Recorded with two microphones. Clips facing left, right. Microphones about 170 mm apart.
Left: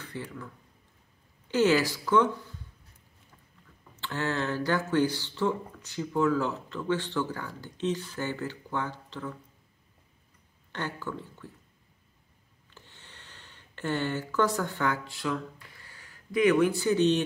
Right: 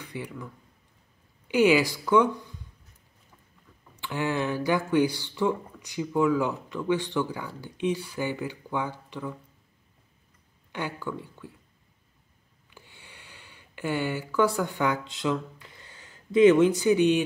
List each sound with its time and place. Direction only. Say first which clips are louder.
0.0 s speech: right 2 dB; 15° right (ahead or behind)
1.5 s speech: right 3 dB; 10° right (ahead or behind)
3.9 s speech: right 3 dB; 15° right (ahead or behind)
10.7 s speech: right 2 dB; 10° right (ahead or behind)
12.6 s a sound: right 2 dB; 10° right (ahead or behind)
15.8 s speech: right 3 dB; 20° right (ahead or behind)